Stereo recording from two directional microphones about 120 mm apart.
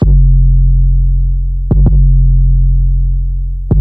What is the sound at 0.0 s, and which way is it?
Music, 35° right (ahead or behind).